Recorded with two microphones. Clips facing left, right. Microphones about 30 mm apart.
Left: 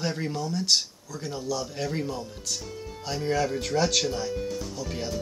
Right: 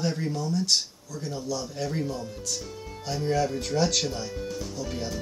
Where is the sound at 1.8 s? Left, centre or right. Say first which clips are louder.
Even; left.